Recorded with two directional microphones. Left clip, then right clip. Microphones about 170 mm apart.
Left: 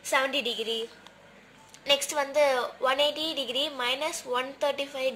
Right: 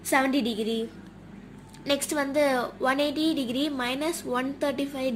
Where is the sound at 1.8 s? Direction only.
10° left (ahead or behind).